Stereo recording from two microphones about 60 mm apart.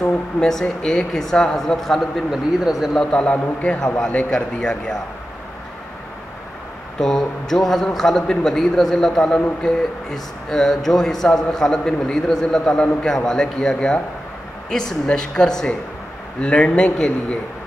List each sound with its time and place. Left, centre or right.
0.4 s a man's voice: centre
2.9 s a man's voice: centre
7.0 s a man's voice: centre